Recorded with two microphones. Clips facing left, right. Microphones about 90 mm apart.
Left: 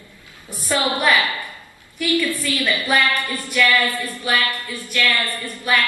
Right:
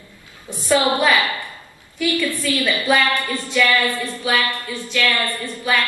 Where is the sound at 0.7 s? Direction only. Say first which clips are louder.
Right 3 dB; 20° right (ahead or behind).